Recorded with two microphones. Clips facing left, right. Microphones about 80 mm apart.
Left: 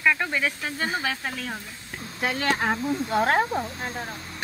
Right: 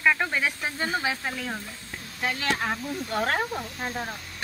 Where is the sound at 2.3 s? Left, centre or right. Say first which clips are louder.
Left 5 dB; left.